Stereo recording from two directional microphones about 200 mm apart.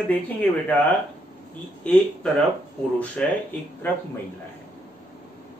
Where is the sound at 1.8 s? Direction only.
5° left (ahead or behind).